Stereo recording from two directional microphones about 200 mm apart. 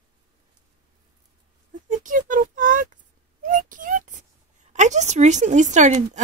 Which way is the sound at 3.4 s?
40° right (ahead or behind).